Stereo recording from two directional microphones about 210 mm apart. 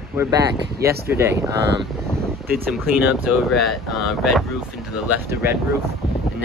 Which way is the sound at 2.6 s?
5° right (ahead or behind).